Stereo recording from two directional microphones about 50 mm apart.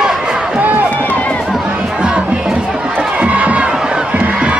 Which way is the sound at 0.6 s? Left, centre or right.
Right.